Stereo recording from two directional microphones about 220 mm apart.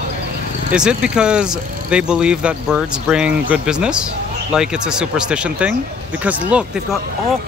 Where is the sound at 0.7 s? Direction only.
5° right (ahead or behind).